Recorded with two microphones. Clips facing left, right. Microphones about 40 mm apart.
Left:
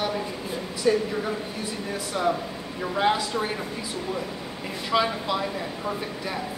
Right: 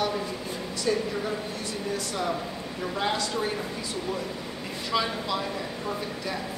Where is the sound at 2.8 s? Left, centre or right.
Centre.